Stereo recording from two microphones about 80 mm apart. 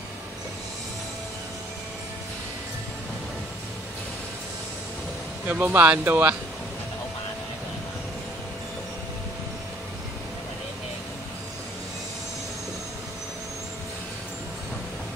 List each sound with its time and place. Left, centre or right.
5.5 s speech: right